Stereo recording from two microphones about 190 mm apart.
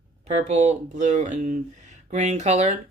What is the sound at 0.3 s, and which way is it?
Speech, 35° right (ahead or behind).